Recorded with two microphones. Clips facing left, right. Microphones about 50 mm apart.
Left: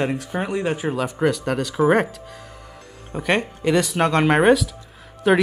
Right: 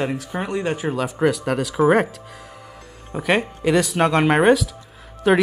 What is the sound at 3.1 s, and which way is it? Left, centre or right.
Speech, centre.